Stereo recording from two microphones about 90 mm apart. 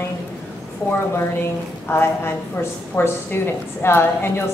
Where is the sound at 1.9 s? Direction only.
25° left (ahead or behind).